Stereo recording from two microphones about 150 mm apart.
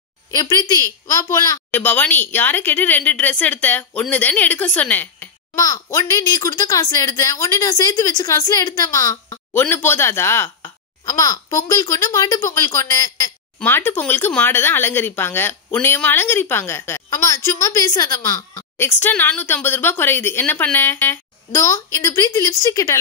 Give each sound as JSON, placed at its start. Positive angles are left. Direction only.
{"t": 0.3, "sound": "a child's voice", "side_deg": 20}
{"t": 1.7, "sound": "speech", "side_deg": 10}
{"t": 5.6, "sound": "a child's voice", "side_deg": 25}
{"t": 18.9, "sound": "speech", "side_deg": 10}